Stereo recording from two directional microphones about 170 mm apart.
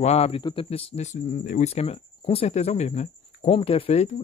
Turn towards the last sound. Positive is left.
turn(degrees=35)  # may be behind; listen again after turning